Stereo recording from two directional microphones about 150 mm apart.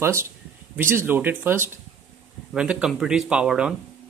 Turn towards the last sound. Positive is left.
turn(degrees=-5)  # may be behind; listen again after turning